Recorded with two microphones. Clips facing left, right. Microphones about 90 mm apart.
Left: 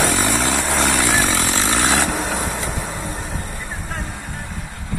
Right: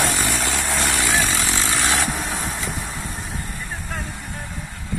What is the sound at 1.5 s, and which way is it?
Vehicle, 45° left (ahead or behind).